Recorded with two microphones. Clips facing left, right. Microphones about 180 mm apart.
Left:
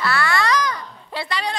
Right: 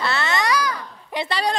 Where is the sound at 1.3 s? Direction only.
35° right (ahead or behind).